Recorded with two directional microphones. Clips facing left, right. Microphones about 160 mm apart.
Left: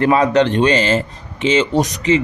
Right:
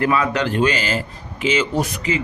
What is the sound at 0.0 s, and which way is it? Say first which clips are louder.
A man's voice: left 6 dB; 35° left (ahead or behind).